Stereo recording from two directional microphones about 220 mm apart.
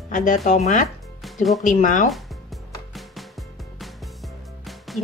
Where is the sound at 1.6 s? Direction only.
35° left (ahead or behind).